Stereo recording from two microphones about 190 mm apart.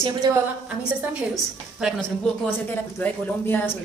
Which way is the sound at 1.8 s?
5° right (ahead or behind).